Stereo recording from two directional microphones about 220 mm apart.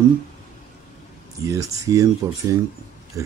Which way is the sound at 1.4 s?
15° right (ahead or behind).